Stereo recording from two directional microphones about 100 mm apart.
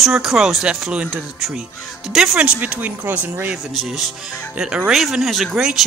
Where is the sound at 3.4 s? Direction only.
5° right (ahead or behind).